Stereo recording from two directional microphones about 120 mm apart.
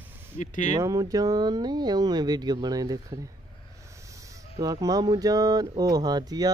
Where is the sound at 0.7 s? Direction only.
30° right (ahead or behind).